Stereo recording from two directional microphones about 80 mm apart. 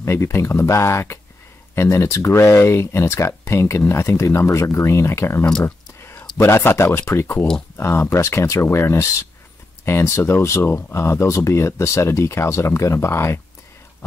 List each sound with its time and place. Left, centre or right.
0.0 s speech: left
5.9 s a sound: left
6.3 s speech: left